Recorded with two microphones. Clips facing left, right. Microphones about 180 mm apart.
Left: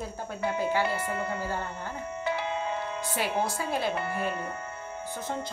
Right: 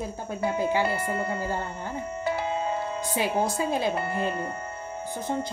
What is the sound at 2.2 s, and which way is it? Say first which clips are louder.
Music: right 3 dB; 35° right (ahead or behind).